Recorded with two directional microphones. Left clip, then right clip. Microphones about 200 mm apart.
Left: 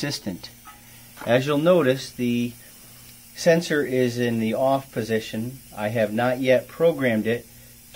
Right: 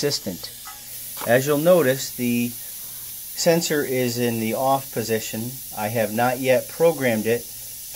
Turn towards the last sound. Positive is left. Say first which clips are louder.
# right 1 dB
turn(degrees=-20)  # may be behind; listen again after turning